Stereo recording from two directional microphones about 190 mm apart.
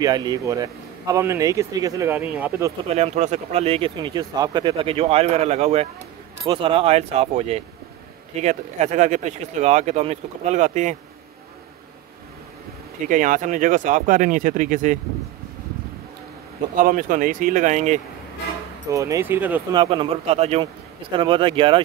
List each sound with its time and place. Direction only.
0.0 s speech: 20° right (ahead or behind)
2.9 s speech: 35° right (ahead or behind)
13.0 s speech: 45° right (ahead or behind)
16.7 s speech: 45° right (ahead or behind)
18.9 s speech: 15° right (ahead or behind)
19.7 s speech: 25° right (ahead or behind)